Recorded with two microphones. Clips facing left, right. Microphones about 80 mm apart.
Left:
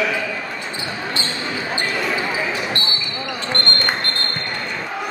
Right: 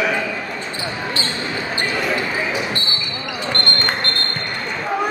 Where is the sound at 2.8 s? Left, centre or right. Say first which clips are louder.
Left 1 dB; left.